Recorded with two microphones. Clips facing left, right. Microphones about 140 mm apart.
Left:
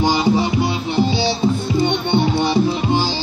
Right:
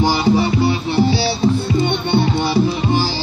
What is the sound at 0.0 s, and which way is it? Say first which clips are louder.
Music: right 1 dB; 15° left (ahead or behind).